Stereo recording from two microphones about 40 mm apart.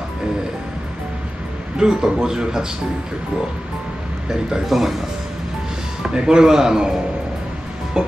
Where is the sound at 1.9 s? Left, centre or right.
Centre.